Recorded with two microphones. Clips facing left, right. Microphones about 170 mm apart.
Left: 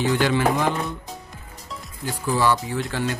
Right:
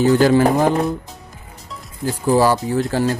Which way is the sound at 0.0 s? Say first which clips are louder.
Right 7 dB; 40° right (ahead or behind).